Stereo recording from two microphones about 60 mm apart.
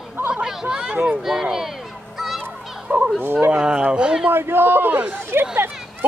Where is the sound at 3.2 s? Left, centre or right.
Right.